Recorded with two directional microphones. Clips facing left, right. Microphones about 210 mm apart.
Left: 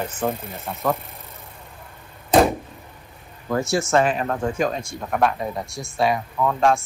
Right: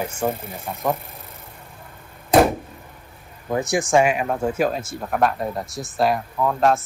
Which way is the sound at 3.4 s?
20° right (ahead or behind).